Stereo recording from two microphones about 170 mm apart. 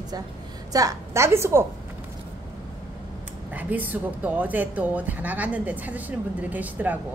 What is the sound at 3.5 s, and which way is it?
A woman's voice, 10° right (ahead or behind).